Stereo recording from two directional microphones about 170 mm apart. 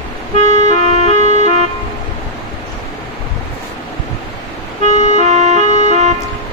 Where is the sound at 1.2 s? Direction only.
45° right (ahead or behind).